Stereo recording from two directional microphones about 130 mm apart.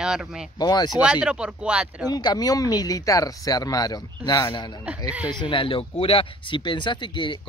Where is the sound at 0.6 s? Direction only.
30° left (ahead or behind).